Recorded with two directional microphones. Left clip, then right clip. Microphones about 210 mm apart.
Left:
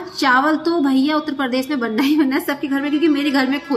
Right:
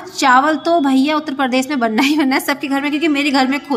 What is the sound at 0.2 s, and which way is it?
A woman's voice, 45° right (ahead or behind).